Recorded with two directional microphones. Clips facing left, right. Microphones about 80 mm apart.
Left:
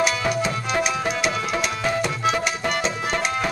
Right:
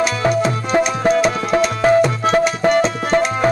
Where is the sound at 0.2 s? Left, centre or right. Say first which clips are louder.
Right 6 dB; right.